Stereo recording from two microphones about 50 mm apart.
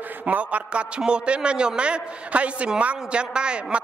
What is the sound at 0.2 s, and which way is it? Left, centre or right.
A woman's voice, right.